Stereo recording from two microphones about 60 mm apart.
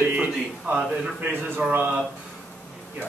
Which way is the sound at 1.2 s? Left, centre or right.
Right.